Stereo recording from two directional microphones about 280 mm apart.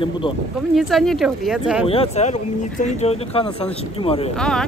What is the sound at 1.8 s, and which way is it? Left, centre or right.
Speech, left.